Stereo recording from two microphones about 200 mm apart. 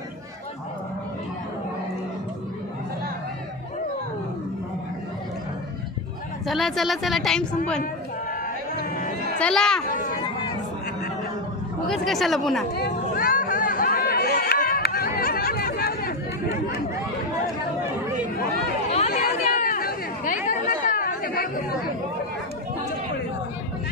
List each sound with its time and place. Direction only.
6.4 s a woman's voice: centre (ahead or behind)
9.4 s a woman's voice: 5° left (ahead or behind)
9.8 s speech: 40° left (ahead or behind)
11.9 s a woman's voice: centre (ahead or behind)
12.7 s chatter: 50° left (ahead or behind)
19.3 s chatter: 45° left (ahead or behind)